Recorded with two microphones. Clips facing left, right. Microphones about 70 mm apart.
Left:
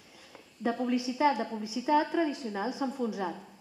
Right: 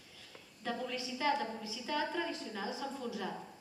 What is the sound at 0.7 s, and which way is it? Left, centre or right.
A woman's voice, left.